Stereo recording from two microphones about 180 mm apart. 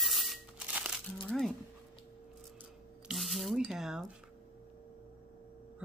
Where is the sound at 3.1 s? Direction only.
Centre (ahead or behind).